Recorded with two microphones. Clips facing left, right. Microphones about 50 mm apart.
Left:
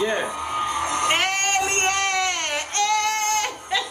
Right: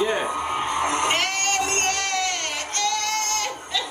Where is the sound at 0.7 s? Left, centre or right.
Right.